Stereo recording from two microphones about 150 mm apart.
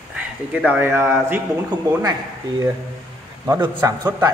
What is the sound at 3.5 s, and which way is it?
Speech, 25° right (ahead or behind).